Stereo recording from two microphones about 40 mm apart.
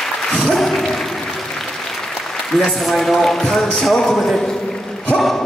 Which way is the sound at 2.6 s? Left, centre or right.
Centre.